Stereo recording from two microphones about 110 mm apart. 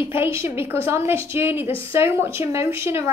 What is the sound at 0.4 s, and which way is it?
A woman's voice, 25° right (ahead or behind).